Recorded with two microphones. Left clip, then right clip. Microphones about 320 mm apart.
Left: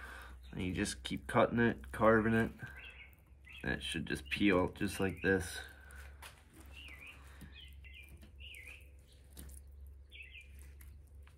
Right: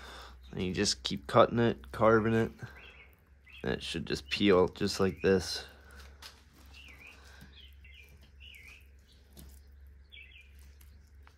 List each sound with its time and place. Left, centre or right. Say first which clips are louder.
0.0 s speech: right 2 dB; right